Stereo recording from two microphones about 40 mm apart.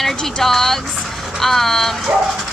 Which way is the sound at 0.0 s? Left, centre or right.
Centre.